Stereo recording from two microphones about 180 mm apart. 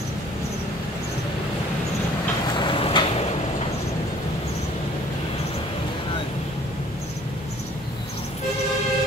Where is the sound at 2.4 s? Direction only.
25° left (ahead or behind).